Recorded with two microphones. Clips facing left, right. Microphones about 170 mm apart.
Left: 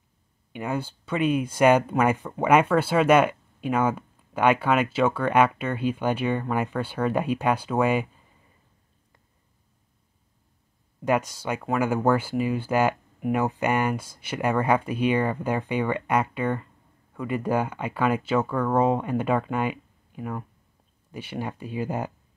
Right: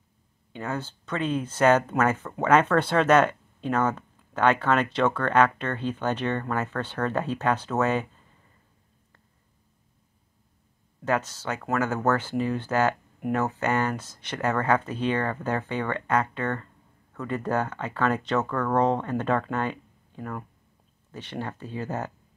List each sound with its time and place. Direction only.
0.5 s speech: 15° left (ahead or behind)
11.1 s speech: 15° left (ahead or behind)